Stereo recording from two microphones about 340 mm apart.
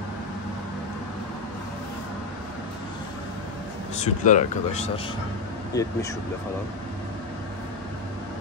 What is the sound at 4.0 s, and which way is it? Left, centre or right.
Speech, left.